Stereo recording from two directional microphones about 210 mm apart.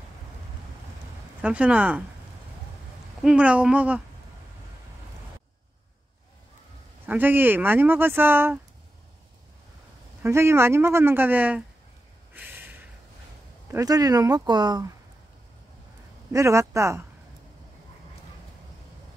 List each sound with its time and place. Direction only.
1.4 s speech: 5° right (ahead or behind)
3.2 s speech: 5° right (ahead or behind)
7.1 s speech: 10° right (ahead or behind)
10.2 s speech: 10° right (ahead or behind)
12.4 s snort: 10° right (ahead or behind)
13.7 s speech: 15° right (ahead or behind)
16.3 s speech: 15° right (ahead or behind)